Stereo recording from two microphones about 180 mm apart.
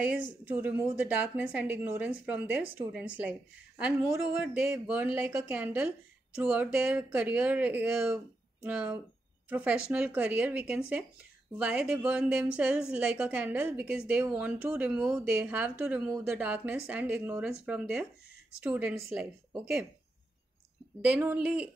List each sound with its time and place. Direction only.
0.1 s a woman's voice: 10° right (ahead or behind)
4.4 s a woman's voice: 10° right (ahead or behind)
21.0 s a woman's voice: 10° right (ahead or behind)